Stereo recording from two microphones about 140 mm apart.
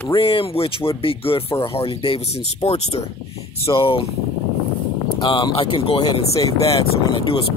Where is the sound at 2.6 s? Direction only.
50° left (ahead or behind).